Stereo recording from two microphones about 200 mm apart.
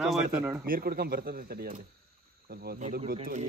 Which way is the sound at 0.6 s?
45° right (ahead or behind).